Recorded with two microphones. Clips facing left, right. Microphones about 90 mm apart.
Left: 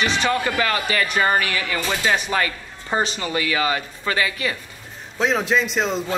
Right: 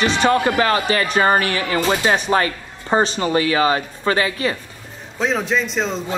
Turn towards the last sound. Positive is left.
turn(degrees=5)  # may be behind; listen again after turning